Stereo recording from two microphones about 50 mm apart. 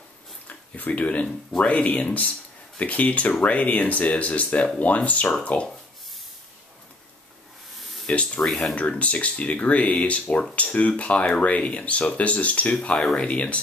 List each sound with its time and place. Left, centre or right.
0.5 s speech: left
8.1 s speech: left
8.4 s speech: centre
8.7 s speech: left